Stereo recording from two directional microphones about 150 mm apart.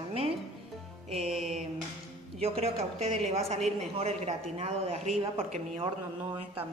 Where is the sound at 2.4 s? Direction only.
45° right (ahead or behind).